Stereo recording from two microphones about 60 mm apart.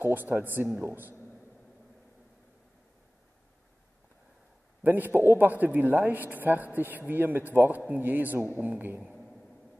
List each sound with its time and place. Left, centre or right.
0.0 s speech: right
4.8 s speech: right